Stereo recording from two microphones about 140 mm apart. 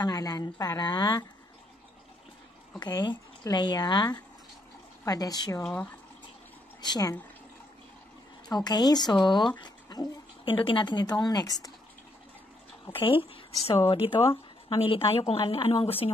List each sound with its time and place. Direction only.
0.0 s speech: 30° left (ahead or behind)
2.8 s speech: 30° left (ahead or behind)
5.6 s speech: 5° left (ahead or behind)
6.8 s speech: 30° left (ahead or behind)
8.5 s speech: 30° left (ahead or behind)
12.8 s speech: 35° left (ahead or behind)